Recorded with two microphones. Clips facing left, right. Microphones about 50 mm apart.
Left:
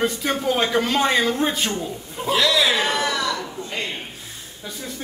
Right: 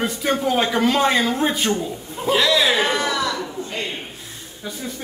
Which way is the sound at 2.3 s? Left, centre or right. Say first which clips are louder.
Right 2 dB; right.